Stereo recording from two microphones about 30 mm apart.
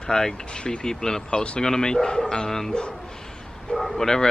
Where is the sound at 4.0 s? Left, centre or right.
Centre.